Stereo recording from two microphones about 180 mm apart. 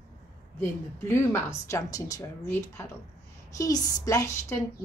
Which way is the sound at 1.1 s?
15° left (ahead or behind).